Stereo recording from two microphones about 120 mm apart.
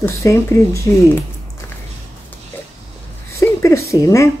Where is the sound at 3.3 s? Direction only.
25° left (ahead or behind).